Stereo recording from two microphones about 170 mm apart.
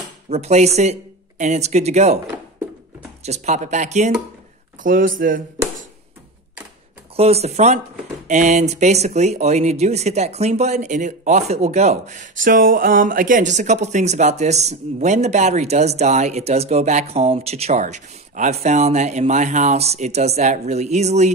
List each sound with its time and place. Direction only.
0.3 s speech: 40° right (ahead or behind)
3.3 s speech: 40° right (ahead or behind)
4.8 s speech: 55° right (ahead or behind)
7.2 s speech: 35° right (ahead or behind)